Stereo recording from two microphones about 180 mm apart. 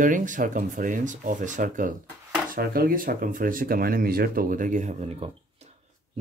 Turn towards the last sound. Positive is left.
turn(degrees=-40)  # may be behind; listen again after turning